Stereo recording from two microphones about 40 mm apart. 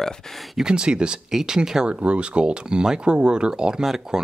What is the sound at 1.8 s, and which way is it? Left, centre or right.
Speech, right.